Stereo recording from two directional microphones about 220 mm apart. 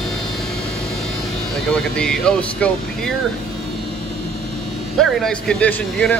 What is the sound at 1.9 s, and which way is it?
Speech, 5° left (ahead or behind).